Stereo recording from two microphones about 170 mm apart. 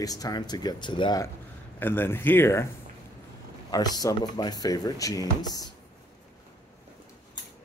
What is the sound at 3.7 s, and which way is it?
A man's voice, 20° left (ahead or behind).